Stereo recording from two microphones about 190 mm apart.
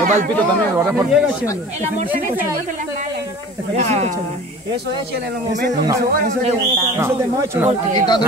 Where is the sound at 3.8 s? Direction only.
35° right (ahead or behind).